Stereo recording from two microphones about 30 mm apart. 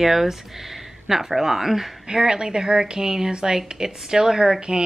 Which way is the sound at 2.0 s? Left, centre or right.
Right.